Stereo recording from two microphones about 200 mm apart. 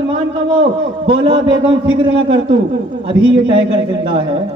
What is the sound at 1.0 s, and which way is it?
Speech, 25° right (ahead or behind).